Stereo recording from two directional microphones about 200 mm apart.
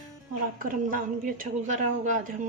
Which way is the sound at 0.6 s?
45° right (ahead or behind).